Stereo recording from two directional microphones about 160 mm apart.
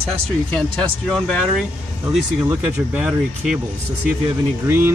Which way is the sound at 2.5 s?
10° right (ahead or behind).